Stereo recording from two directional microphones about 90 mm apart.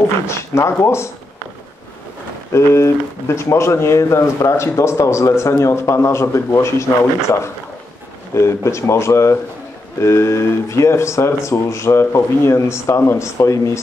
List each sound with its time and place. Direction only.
0.3 s speech: 30° left (ahead or behind)
2.5 s speech: 30° left (ahead or behind)
8.4 s speech: 30° left (ahead or behind)